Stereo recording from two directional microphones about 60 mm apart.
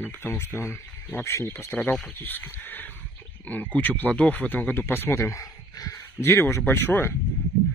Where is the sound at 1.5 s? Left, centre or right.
Left.